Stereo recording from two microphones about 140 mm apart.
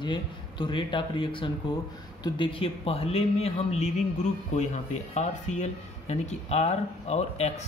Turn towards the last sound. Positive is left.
turn(degrees=50)  # may be behind; listen again after turning